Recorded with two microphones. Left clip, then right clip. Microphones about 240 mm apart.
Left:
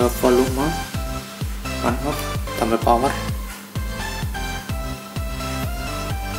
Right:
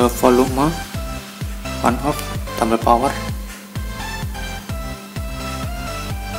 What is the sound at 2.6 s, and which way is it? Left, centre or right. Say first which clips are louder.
Speech: right 3 dB; centre.